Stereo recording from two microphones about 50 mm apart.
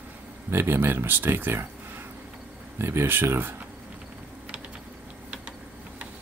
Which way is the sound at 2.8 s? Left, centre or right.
Right.